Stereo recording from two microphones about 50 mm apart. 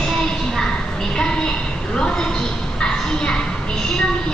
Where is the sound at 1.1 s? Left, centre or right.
Centre.